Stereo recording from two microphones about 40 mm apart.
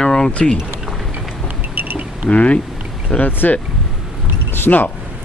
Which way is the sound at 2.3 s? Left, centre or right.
Left.